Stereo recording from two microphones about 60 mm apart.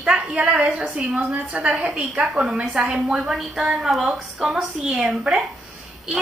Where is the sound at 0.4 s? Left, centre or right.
Right; by 5.0 s centre.